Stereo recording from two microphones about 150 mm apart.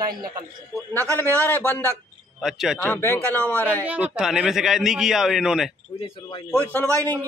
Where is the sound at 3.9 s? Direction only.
5° right (ahead or behind).